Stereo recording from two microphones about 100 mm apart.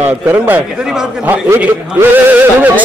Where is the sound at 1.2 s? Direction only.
20° right (ahead or behind).